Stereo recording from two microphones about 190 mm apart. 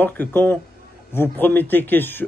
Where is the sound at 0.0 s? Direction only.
10° left (ahead or behind).